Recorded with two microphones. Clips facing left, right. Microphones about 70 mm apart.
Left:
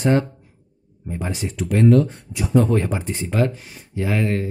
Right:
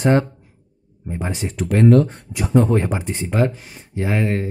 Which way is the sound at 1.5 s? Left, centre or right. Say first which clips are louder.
Right 2 dB; right.